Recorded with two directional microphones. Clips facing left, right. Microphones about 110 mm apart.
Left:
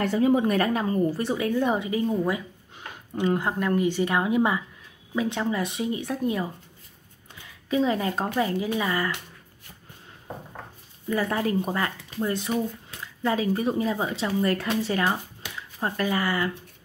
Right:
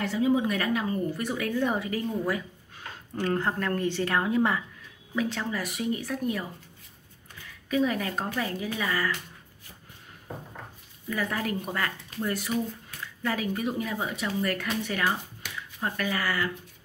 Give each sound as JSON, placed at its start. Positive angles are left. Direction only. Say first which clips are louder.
{"t": 0.0, "sound": "a woman's voice", "louder": "left 4 dB", "side_deg": 50}
{"t": 1.6, "sound": "a woman's voice", "louder": "left 4 dB", "side_deg": 20}
{"t": 11.1, "sound": "a woman's voice", "louder": "left 5 dB", "side_deg": 25}